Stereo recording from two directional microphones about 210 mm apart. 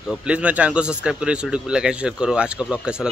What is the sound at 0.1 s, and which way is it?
Speech, 5° right (ahead or behind).